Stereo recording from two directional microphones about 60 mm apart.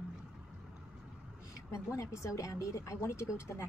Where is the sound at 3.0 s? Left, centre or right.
Left.